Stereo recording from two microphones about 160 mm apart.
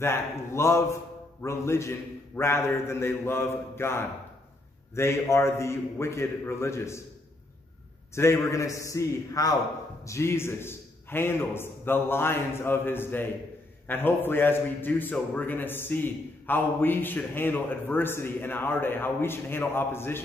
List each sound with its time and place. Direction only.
0.0 s a man's voice: 15° left (ahead or behind)
8.1 s a man's voice: 15° left (ahead or behind)